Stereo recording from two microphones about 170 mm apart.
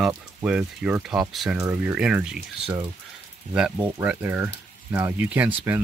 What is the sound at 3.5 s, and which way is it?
Speech, 5° right (ahead or behind).